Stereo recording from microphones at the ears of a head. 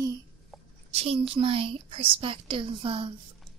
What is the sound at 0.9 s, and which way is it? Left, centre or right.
A woman's voice, right.